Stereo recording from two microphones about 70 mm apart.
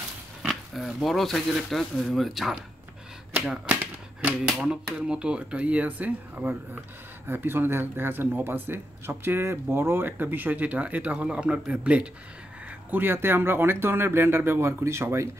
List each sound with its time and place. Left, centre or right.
0.7 s speech: centre
3.6 s typewriter: right
4.5 s speech: centre
12.9 s speech: right